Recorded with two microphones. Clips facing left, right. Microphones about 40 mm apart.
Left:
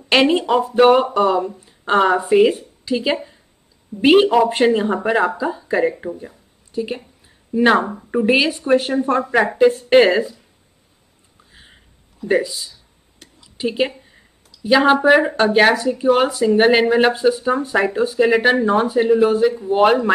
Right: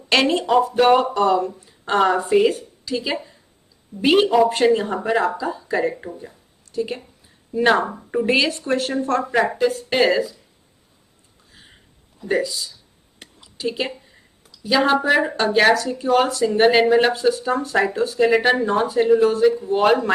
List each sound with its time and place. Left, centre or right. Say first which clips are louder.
0.1 s a woman's voice: left 2 dB; centre
11.5 s a sound: left 2 dB; centre
12.3 s a woman's voice: left 3 dB; centre